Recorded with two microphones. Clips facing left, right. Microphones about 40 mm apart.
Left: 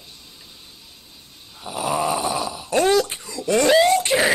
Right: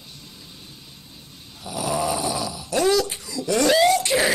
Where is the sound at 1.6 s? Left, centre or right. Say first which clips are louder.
Left 2 dB; left.